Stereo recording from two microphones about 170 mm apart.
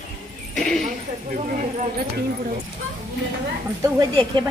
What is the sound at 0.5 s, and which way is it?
Speech, 5° left (ahead or behind).